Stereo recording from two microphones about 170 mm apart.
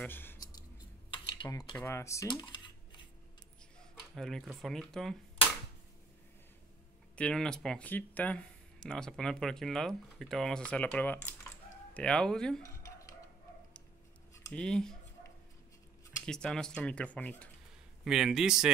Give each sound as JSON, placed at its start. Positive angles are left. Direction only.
{"t": 0.0, "sound": "a sound", "side_deg": 10}
{"t": 1.1, "sound": "speech", "side_deg": 25}
{"t": 2.2, "sound": "a sound", "side_deg": 25}
{"t": 4.1, "sound": "speech", "side_deg": 0}
{"t": 7.2, "sound": "speech", "side_deg": 5}
{"t": 14.3, "sound": "a sound", "side_deg": 15}
{"t": 14.6, "sound": "speech", "side_deg": 5}
{"t": 16.3, "sound": "speech", "side_deg": 5}
{"t": 18.0, "sound": "speech", "side_deg": -5}